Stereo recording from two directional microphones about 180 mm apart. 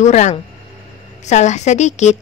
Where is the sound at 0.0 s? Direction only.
40° left (ahead or behind).